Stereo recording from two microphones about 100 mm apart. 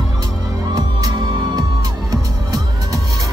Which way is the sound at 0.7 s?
45° right (ahead or behind).